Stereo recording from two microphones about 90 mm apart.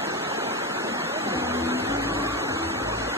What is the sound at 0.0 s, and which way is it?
Waterfall, 30° right (ahead or behind).